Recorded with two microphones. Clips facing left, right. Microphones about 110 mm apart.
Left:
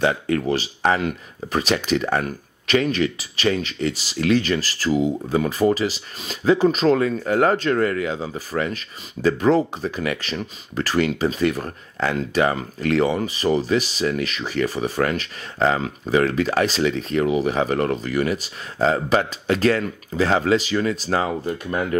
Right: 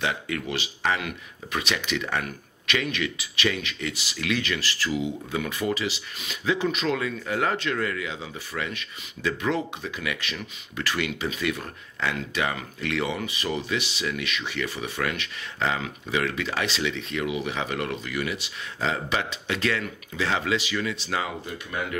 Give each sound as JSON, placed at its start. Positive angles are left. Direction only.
{"t": 0.0, "sound": "speech", "side_deg": 40}